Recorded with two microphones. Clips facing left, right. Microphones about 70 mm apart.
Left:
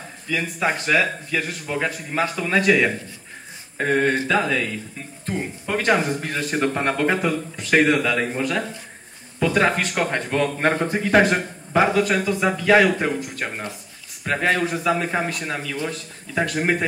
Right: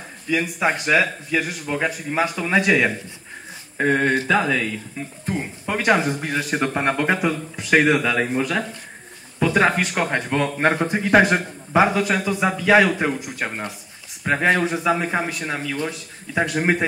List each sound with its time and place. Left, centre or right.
0.3 s speech: centre